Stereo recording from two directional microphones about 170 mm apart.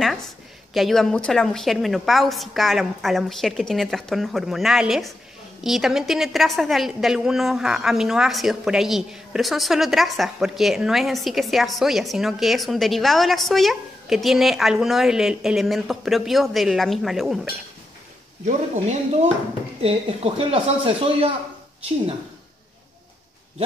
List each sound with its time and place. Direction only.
0.7 s a woman's voice: centre (ahead or behind)
18.4 s speech: 40° right (ahead or behind)